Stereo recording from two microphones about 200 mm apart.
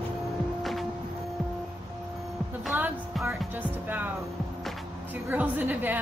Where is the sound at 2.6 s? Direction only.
5° right (ahead or behind).